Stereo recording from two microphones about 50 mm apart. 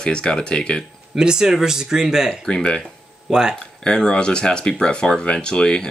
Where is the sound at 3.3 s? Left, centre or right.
Centre.